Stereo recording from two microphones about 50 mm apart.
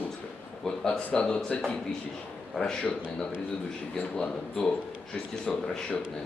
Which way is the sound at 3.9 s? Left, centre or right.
Centre.